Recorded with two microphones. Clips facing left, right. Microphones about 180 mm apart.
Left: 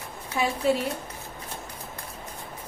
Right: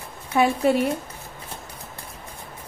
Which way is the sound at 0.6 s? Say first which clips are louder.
Right 2 dB; 55° right (ahead or behind).